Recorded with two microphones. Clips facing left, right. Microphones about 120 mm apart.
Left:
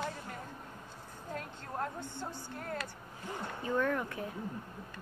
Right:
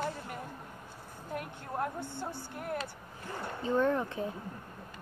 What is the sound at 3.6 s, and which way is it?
Speech, 25° right (ahead or behind).